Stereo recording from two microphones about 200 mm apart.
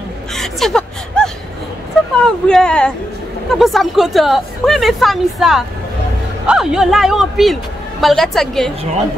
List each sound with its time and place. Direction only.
0.3 s whimper: centre (ahead or behind)
2.1 s a woman's voice: 5° left (ahead or behind)